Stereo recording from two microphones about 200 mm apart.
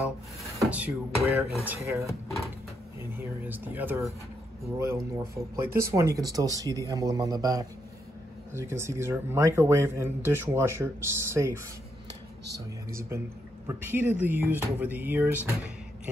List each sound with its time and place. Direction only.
0.4 s speech: 5° right (ahead or behind)
13.7 s speech: 10° right (ahead or behind)